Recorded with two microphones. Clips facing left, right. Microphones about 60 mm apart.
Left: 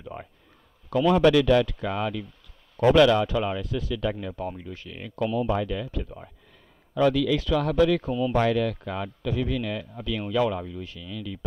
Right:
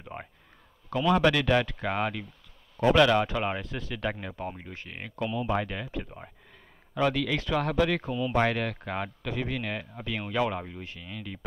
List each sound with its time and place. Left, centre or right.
0.0 s a sound: right
1.1 s a man's voice: right
4.3 s speech: right
4.6 s speech: right
5.1 s speech: right
5.5 s a man's voice: right